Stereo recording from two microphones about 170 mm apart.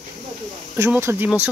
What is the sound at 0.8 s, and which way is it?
Speech, 15° right (ahead or behind).